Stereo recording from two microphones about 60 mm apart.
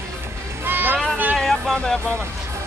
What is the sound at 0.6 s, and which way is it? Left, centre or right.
Music, right.